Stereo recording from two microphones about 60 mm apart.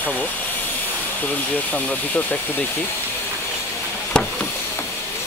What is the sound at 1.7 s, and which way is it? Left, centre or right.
Speech, left.